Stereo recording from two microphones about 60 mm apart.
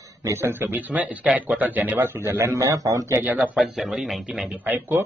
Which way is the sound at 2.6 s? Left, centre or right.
Right.